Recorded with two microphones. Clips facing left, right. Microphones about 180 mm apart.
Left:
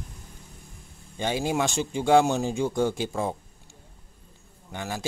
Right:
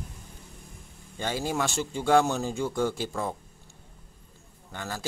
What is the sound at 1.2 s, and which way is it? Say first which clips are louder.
A man's voice: left 3 dB; 20° left (ahead or behind).